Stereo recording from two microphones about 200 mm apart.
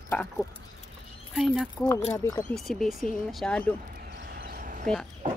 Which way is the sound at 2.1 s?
15° left (ahead or behind).